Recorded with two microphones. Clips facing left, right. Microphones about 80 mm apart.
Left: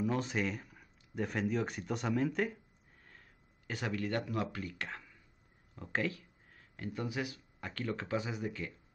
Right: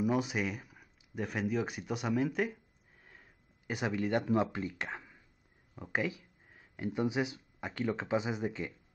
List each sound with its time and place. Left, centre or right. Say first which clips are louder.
0.0 s speech: right 2 dB; centre